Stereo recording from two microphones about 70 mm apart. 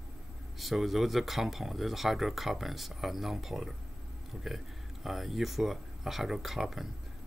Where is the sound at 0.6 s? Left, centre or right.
Centre.